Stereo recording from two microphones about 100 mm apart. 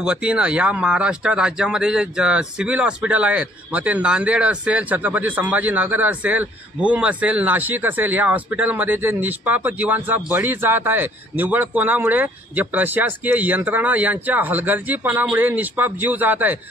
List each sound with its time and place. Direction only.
0.0 s speech: 10° right (ahead or behind)